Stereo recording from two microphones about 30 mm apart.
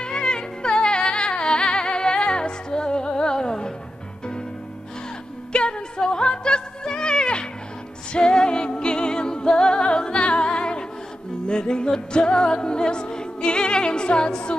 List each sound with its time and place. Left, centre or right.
0.0 s music: left
5.5 s music: left